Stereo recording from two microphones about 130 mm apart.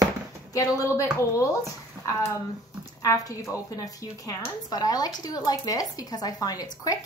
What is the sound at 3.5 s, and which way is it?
A woman's voice, 25° left (ahead or behind).